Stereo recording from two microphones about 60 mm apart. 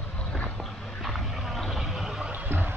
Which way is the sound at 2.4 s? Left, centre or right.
Right.